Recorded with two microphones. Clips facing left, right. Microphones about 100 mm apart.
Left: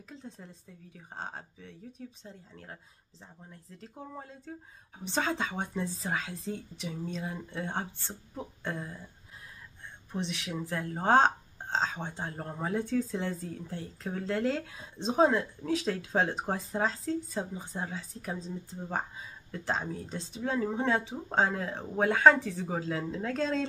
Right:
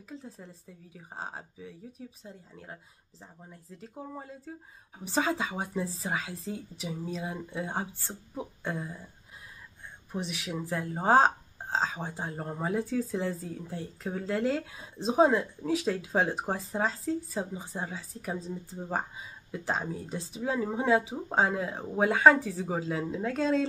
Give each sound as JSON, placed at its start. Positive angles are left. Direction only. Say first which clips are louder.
{"t": 0.1, "sound": "speech", "louder": "right 3 dB", "side_deg": 0}
{"t": 10.1, "sound": "speech", "louder": "even", "side_deg": -5}